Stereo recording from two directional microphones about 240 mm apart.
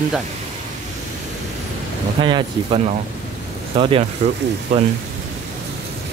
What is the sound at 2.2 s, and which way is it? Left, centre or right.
Speech, centre.